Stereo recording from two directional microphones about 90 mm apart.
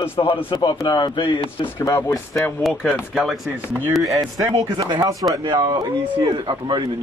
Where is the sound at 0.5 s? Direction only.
60° left (ahead or behind).